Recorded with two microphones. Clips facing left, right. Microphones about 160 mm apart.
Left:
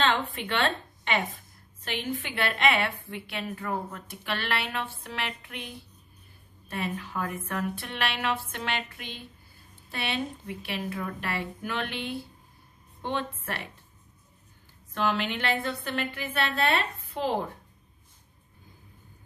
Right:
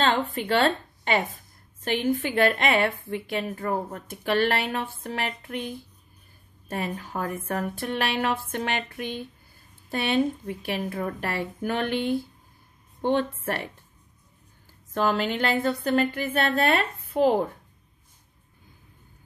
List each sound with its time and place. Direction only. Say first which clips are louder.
0.0 s a woman's voice: right 3 dB; 40° right (ahead or behind)
6.7 s a woman's voice: right 2 dB; 45° right (ahead or behind)
15.0 s a woman's voice: right 4 dB; 40° right (ahead or behind)